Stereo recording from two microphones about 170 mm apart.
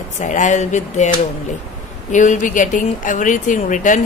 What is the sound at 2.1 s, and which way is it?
A woman's voice, 45° left (ahead or behind).